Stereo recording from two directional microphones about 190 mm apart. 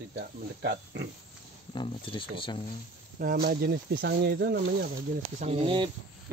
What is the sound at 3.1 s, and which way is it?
Speech, 50° right (ahead or behind).